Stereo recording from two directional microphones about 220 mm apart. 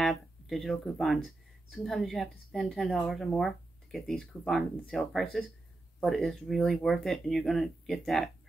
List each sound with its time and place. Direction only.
0.0 s speech: centre (ahead or behind)